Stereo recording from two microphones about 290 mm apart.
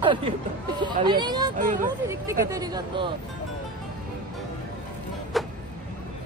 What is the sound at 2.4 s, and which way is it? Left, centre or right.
Speech, centre.